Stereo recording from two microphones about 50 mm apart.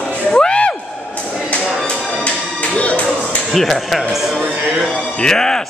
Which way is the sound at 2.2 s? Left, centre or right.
Left.